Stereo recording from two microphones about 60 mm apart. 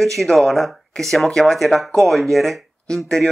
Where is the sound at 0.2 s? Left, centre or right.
Centre.